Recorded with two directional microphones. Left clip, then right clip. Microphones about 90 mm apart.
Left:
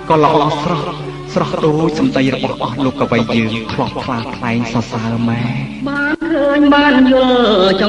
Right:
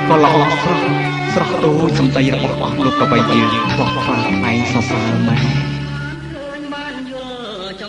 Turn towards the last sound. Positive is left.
turn(degrees=55)  # may be behind; listen again after turning